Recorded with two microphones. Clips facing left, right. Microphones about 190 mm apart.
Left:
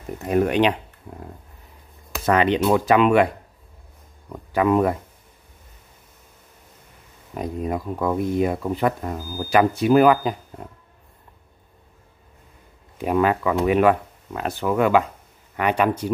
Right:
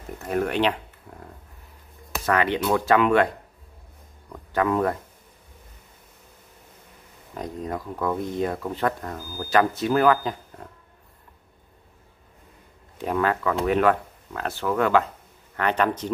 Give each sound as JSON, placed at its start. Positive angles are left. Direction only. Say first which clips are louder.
{"t": 0.2, "sound": "speech", "louder": "left 5 dB", "side_deg": 15}
{"t": 1.1, "sound": "a sound", "louder": "left 6 dB", "side_deg": 20}
{"t": 2.2, "sound": "speech", "louder": "left 4 dB", "side_deg": 20}
{"t": 7.3, "sound": "speech", "louder": "left 5 dB", "side_deg": 10}
{"t": 12.9, "sound": "speech", "louder": "left 4 dB", "side_deg": 15}